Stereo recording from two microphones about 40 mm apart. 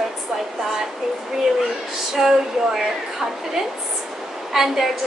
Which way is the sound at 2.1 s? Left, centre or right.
Centre.